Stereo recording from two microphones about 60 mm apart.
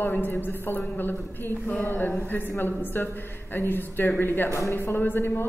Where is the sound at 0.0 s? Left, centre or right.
Left.